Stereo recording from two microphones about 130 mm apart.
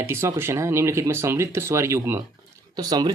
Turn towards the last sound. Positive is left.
turn(degrees=-30)  # may be behind; listen again after turning